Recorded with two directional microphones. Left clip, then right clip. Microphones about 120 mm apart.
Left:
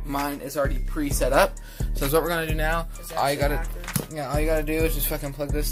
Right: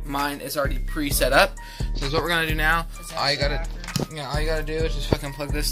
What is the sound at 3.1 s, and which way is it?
Speech, 25° left (ahead or behind).